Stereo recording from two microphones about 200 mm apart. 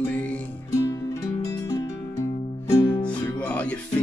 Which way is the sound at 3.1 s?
5° left (ahead or behind).